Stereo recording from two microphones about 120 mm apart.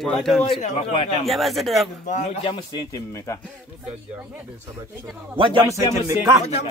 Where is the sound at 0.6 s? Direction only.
80° left.